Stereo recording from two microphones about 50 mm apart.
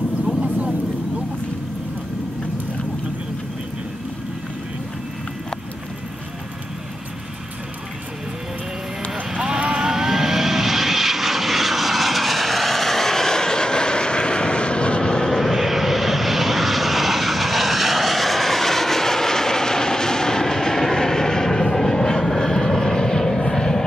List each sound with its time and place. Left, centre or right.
9.3 s vehicle: centre
15.5 s vehicle: centre